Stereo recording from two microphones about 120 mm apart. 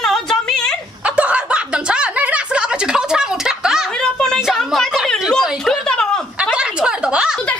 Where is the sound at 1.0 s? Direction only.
10° right (ahead or behind).